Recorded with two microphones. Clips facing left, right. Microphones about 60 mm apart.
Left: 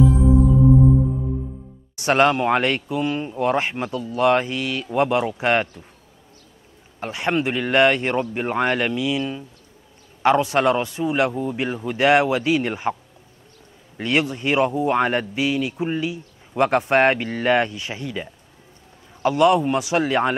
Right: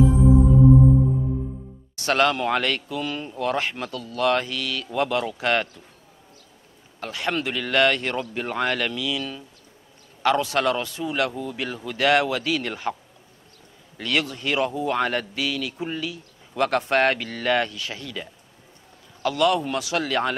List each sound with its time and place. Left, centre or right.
2.0 s a man's voice: left
7.0 s a man's voice: left
13.9 s a man's voice: left